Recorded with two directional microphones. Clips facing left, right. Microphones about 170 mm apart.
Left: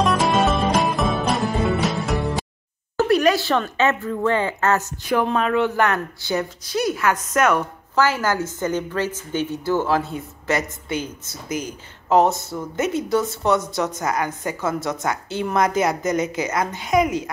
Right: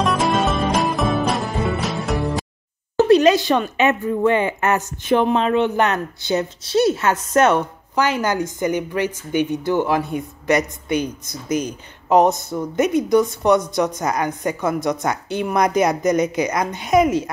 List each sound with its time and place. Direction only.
0.0 s music: centre (ahead or behind)
3.0 s speech: 20° right (ahead or behind)
7.9 s a woman's voice: 20° right (ahead or behind)